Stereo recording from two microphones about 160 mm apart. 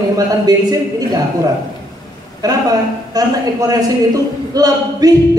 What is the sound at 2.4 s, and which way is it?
A man's voice, 25° right (ahead or behind).